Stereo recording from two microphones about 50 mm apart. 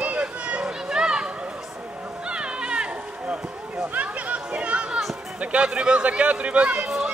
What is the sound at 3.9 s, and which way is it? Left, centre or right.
Chatter, right.